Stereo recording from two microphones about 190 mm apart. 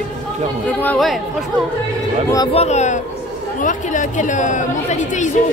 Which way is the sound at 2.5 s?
35° left (ahead or behind).